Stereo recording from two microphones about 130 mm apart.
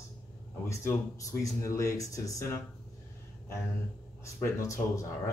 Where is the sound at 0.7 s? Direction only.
25° left (ahead or behind).